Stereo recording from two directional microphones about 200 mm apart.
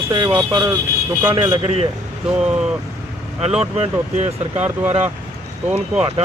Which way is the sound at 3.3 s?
30° right (ahead or behind).